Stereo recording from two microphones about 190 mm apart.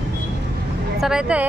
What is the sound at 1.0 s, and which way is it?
Speech, 5° right (ahead or behind).